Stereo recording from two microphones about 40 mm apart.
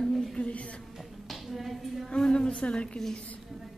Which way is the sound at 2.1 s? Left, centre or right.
Centre.